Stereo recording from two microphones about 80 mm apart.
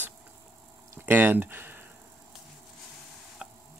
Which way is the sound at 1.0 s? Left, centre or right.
Right.